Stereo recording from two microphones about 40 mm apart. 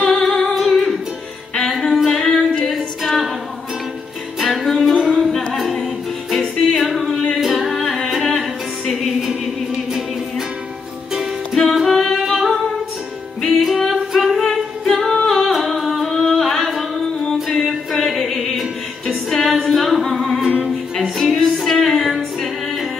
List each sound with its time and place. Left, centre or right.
0.0 s music: centre
4.4 s music: centre
7.3 s singing: centre
7.7 s humming: centre
8.9 s music: centre
11.7 s music: centre
13.5 s a capella: centre
15.2 s singing: centre
17.5 s music: centre